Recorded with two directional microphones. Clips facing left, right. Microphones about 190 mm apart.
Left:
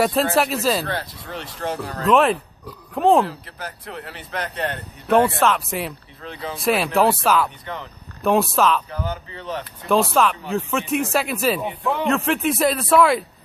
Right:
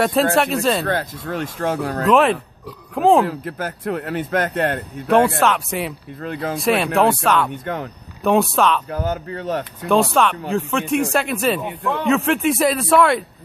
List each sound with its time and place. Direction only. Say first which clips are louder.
0.0 s a man's voice: right 2 dB; centre (ahead or behind)
0.8 s speech: right 6 dB; 50° right (ahead or behind)
2.0 s a man's voice: right 1 dB; centre (ahead or behind)
3.3 s speech: right 8 dB; 50° right (ahead or behind)
5.1 s a man's voice: right 1 dB; centre (ahead or behind)
6.2 s speech: right 6 dB; 50° right (ahead or behind)
6.6 s a man's voice: right 1 dB; centre (ahead or behind)
7.6 s speech: right 7 dB; 50° right (ahead or behind)
8.2 s a man's voice: right 2 dB; centre (ahead or behind)
8.9 s speech: right 5 dB; 45° right (ahead or behind)
9.8 s a man's voice: right 1 dB; centre (ahead or behind)